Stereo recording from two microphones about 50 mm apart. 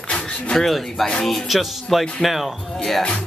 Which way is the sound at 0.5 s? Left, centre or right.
Centre.